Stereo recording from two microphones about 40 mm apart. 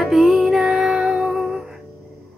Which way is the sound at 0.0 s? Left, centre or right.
Centre.